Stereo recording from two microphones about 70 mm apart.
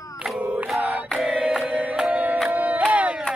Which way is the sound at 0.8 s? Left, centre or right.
Right.